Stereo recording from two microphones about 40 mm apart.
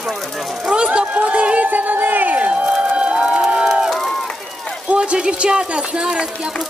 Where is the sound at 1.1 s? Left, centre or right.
Right.